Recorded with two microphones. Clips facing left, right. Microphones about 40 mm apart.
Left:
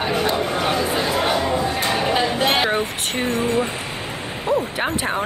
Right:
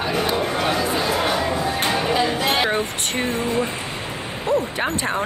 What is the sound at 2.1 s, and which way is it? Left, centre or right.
Music, left.